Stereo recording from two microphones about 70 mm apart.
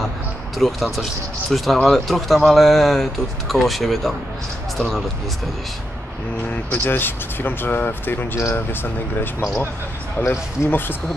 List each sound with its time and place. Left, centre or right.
0.6 s speech: centre
6.7 s speech: left